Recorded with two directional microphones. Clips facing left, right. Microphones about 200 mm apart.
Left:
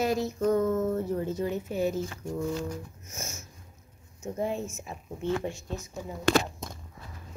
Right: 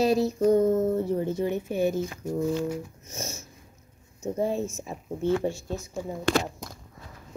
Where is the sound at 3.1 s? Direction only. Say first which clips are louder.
Right 5 dB; 30° right (ahead or behind).